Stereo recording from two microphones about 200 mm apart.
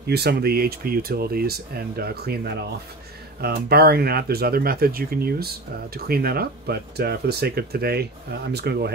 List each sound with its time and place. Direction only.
0.0 s speech: 55° right (ahead or behind)